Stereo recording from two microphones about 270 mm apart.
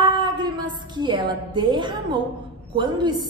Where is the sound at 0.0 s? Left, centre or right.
Centre.